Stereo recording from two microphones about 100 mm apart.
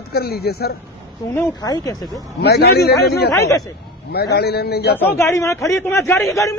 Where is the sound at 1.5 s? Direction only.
40° left (ahead or behind).